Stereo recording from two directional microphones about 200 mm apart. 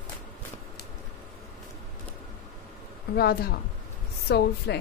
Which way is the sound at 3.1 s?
50° left (ahead or behind).